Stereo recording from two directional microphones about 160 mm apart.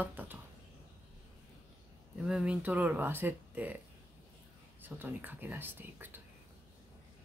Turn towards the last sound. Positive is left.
turn(degrees=-15)  # may be behind; listen again after turning